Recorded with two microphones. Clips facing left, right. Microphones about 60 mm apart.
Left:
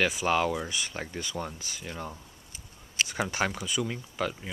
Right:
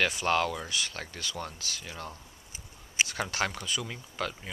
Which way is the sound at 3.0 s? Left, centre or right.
Centre.